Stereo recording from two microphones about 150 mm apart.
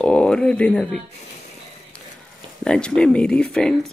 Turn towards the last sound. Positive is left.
turn(degrees=5)  # may be behind; listen again after turning